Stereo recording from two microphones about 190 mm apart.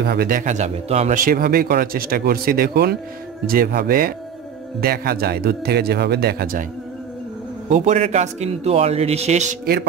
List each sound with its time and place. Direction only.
0.0 s a man's voice: 55° right (ahead or behind)
7.7 s a man's voice: 35° right (ahead or behind)